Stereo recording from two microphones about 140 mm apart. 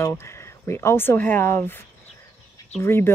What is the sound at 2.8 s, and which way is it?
Speech, 15° left (ahead or behind).